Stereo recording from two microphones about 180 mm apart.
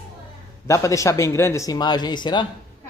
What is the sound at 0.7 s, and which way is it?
A man's voice, 15° left (ahead or behind).